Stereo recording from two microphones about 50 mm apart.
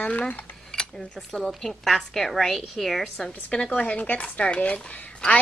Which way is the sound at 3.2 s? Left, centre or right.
Centre.